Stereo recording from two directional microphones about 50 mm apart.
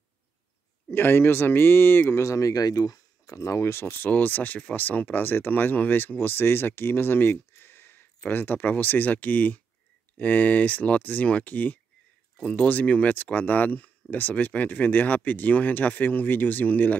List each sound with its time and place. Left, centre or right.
0.9 s speech: left
2.1 s speech: left
3.4 s speech: left
3.9 s speech: left
12.4 s speech: left